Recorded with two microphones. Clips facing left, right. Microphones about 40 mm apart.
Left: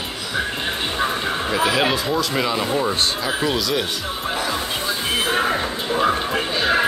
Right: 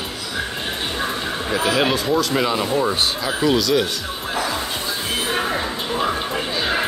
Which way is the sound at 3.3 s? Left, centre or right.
Centre.